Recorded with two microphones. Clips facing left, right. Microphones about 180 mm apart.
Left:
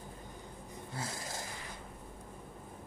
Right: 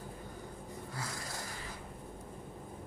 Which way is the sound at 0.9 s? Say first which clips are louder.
Left 3 dB; 25° left (ahead or behind).